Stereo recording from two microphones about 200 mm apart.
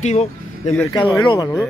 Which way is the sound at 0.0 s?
35° left (ahead or behind).